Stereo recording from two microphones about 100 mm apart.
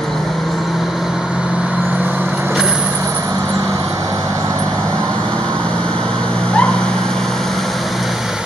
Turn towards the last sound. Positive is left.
turn(degrees=10)  # may be behind; listen again after turning